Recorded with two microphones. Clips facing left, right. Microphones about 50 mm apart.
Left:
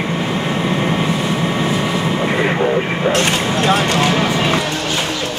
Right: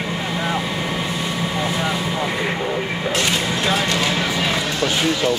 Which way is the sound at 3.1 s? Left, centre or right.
Left.